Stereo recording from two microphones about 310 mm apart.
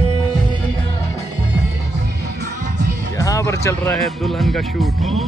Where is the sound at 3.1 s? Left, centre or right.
Centre.